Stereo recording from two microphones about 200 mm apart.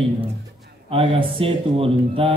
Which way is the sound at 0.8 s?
30° right (ahead or behind).